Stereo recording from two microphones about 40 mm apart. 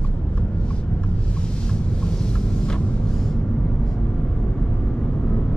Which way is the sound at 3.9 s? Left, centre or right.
Left.